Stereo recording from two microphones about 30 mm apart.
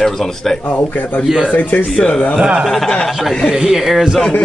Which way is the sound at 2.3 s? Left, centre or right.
Right.